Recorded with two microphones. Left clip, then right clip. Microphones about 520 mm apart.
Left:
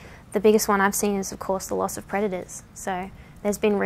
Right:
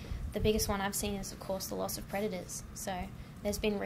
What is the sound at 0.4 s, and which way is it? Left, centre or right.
A woman's voice, left.